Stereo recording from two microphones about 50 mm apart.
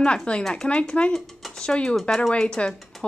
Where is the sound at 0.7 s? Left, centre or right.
Left.